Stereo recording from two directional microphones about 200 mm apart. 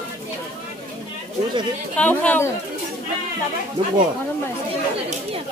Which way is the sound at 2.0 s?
5° left (ahead or behind).